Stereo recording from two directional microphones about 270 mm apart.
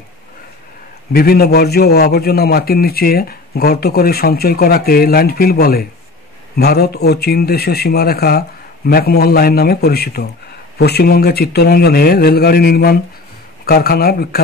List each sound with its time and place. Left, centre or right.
1.1 s a man's voice: left